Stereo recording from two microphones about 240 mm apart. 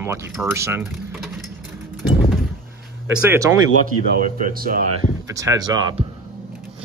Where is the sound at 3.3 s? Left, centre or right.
Centre.